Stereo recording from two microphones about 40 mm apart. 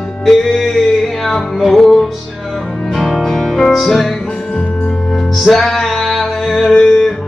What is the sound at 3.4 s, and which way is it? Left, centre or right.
Music, centre.